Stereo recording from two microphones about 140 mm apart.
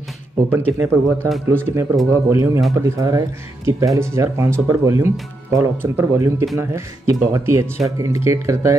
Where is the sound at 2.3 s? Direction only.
20° right (ahead or behind).